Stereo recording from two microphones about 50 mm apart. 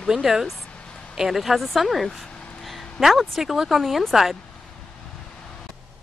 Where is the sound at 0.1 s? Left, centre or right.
Centre.